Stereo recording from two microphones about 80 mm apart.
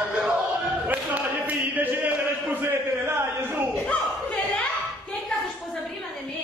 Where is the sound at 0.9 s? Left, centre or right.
Right.